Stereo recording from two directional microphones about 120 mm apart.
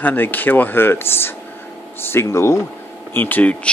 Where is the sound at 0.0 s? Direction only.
15° left (ahead or behind).